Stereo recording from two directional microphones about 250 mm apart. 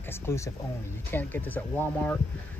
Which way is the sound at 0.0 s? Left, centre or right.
Centre.